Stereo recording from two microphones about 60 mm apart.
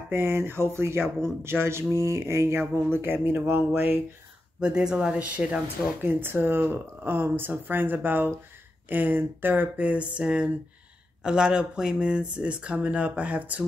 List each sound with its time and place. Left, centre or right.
0.1 s speech: right
4.6 s speech: centre
6.0 s speech: right